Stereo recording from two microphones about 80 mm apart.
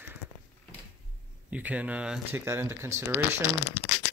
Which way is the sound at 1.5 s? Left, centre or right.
Centre.